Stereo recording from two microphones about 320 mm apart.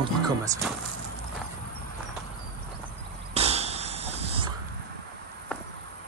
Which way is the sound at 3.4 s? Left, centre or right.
Centre.